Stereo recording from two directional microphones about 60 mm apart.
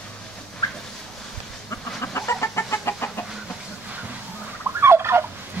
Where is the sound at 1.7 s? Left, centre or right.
Left.